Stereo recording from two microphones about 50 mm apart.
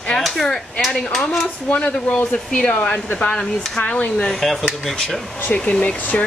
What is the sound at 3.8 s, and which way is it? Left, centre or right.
Speech, left.